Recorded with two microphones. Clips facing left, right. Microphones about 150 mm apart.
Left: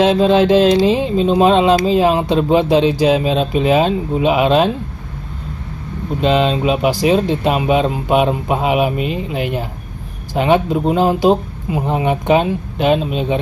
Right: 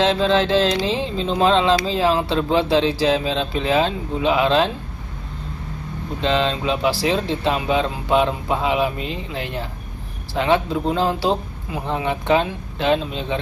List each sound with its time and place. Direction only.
0.0 s speech: 15° left (ahead or behind)
6.2 s speech: 15° left (ahead or behind)